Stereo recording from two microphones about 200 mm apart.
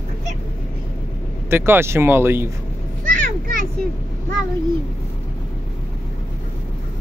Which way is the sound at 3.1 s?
45° right (ahead or behind).